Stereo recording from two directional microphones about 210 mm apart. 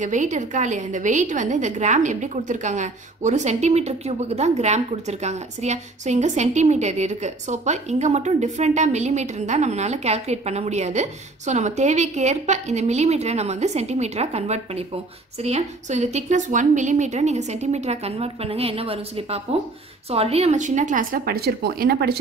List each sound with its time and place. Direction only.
0.0 s a woman's voice: 35° right (ahead or behind)